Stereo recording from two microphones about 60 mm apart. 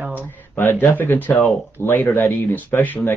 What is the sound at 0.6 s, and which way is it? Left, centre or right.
Speech, left.